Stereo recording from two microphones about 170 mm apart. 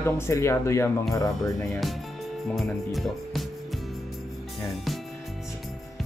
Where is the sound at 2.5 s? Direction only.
Centre (ahead or behind).